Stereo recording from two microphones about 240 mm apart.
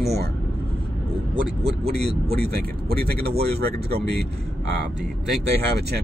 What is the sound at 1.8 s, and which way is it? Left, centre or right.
Speech, right.